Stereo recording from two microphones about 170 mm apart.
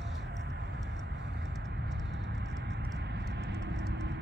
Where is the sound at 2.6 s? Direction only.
90° right.